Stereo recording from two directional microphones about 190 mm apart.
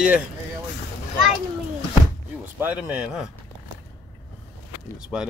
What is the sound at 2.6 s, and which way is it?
Speech, 5° right (ahead or behind).